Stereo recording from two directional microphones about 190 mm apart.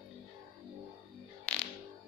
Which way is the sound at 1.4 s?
5° left (ahead or behind).